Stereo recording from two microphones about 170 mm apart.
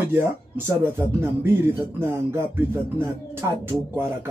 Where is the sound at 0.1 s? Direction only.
15° right (ahead or behind).